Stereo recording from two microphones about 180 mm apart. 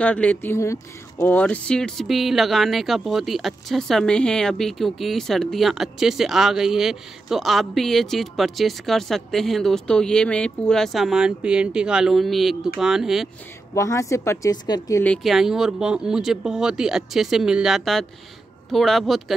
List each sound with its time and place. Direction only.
0.0 s speech: 10° left (ahead or behind)
13.7 s speech: 15° left (ahead or behind)
15.0 s speech: centre (ahead or behind)